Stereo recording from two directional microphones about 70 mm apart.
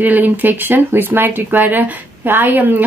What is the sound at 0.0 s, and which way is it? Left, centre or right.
Speech, right.